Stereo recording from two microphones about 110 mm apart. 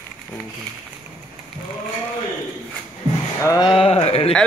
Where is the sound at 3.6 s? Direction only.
50° left (ahead or behind).